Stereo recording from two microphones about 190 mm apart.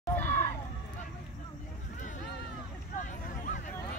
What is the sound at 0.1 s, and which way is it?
Crowd, 10° left (ahead or behind).